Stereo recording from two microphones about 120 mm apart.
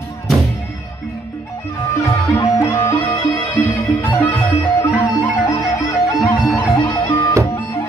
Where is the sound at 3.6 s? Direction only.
15° left (ahead or behind).